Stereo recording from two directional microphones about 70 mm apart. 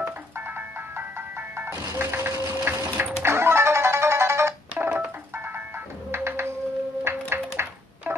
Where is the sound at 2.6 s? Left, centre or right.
Right.